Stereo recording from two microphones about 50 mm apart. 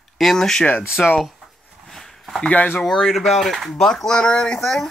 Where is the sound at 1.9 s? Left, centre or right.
Centre.